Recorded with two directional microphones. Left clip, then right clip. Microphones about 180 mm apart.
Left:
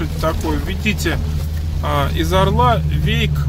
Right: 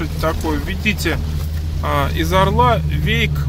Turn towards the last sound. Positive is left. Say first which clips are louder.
# right 2 dB
turn(degrees=-5)  # may be behind; listen again after turning